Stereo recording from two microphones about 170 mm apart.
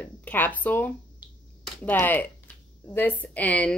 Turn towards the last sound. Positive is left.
turn(degrees=10)  # may be behind; listen again after turning